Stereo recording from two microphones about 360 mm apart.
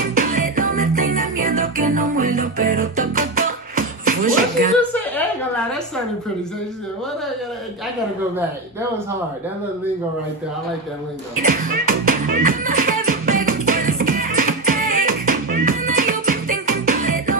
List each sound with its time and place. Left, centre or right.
0.1 s music: right
11.4 s music: right